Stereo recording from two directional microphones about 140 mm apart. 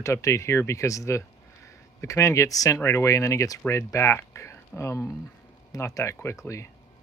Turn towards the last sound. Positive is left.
turn(degrees=20)  # may be behind; listen again after turning